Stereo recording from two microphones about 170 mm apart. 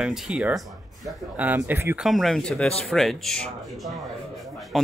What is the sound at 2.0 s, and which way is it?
Speech, centre (ahead or behind).